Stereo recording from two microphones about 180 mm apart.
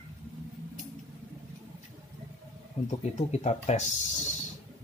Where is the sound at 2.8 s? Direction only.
40° left (ahead or behind).